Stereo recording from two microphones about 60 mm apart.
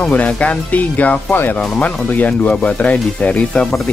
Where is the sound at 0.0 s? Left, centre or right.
Left.